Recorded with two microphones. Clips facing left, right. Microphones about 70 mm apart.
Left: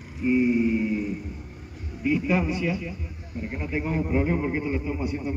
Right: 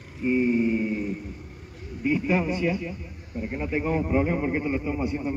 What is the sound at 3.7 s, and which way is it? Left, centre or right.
A man's voice, centre.